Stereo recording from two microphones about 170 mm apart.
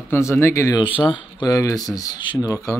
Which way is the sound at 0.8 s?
30° left (ahead or behind).